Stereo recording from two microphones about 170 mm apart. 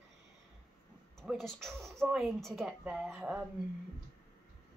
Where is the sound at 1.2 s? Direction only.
Centre (ahead or behind).